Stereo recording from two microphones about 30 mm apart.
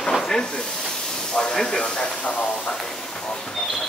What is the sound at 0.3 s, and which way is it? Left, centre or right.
Hiss, left.